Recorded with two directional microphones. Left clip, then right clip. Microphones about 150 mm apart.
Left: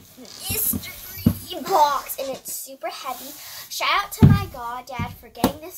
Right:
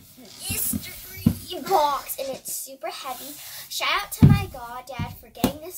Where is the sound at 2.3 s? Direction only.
20° right (ahead or behind).